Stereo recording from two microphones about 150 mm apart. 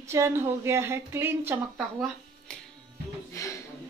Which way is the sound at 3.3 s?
20° left (ahead or behind).